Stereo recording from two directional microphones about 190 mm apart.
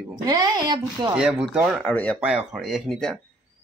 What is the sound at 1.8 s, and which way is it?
Speech, 5° left (ahead or behind).